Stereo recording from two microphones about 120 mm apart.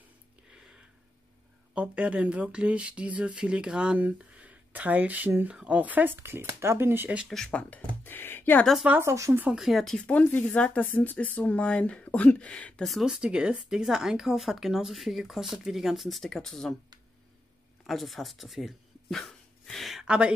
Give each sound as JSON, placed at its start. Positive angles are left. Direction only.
{"t": 0.5, "sound": "a sound", "side_deg": -5}
{"t": 1.7, "sound": "speech", "side_deg": -10}
{"t": 7.2, "sound": "speech", "side_deg": 5}
{"t": 8.0, "sound": "a sound", "side_deg": 15}
{"t": 8.8, "sound": "speech", "side_deg": -15}
{"t": 9.1, "sound": "speech", "side_deg": -25}
{"t": 9.4, "sound": "speech", "side_deg": -5}
{"t": 10.0, "sound": "speech", "side_deg": 15}
{"t": 17.8, "sound": "speech", "side_deg": 0}